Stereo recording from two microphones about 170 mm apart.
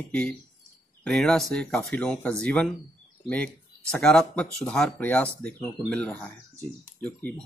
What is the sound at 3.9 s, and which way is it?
Speech, 5° left (ahead or behind).